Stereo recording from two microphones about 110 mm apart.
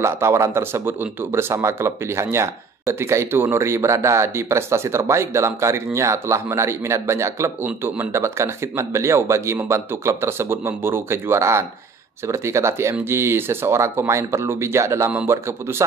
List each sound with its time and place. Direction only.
0.0 s speech: 25° right (ahead or behind)